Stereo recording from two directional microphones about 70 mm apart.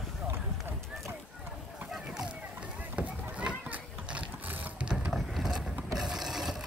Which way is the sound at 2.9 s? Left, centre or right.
Centre.